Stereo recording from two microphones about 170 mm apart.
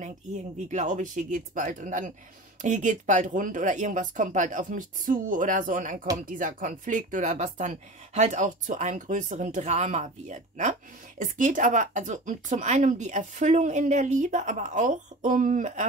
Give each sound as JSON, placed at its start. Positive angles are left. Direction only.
{"t": 0.0, "sound": "speech", "side_deg": -45}